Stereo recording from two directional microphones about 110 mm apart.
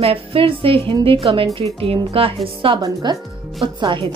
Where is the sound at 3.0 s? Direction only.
40° right (ahead or behind).